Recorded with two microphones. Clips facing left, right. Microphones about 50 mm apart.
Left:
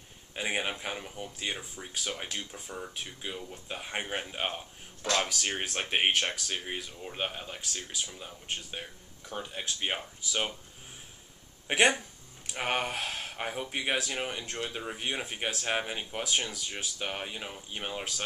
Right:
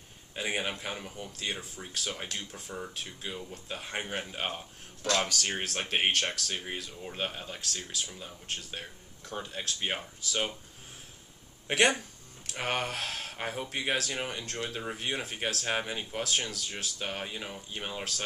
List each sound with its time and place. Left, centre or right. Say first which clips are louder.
0.3 s speech: left 1 dB; centre
11.6 s speech: left 1 dB; centre